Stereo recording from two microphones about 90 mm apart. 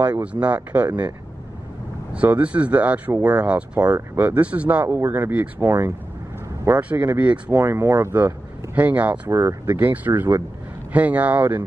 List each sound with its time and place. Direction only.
0.2 s speech: 15° right (ahead or behind)
2.1 s speech: 15° right (ahead or behind)
9.3 s speech: 35° right (ahead or behind)
9.8 s speech: 20° right (ahead or behind)
10.9 s speech: 15° right (ahead or behind)